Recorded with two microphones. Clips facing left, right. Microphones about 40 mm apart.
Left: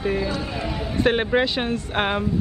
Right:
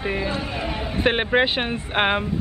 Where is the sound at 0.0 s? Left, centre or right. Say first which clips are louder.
Left 1 dB; right.